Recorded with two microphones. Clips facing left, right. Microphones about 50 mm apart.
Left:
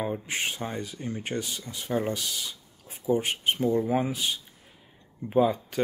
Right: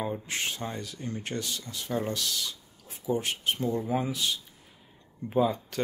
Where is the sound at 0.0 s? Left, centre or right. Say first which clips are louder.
Left 2 dB; centre.